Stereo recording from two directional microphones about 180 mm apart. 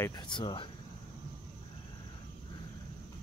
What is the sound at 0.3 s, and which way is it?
Speech, 25° left (ahead or behind).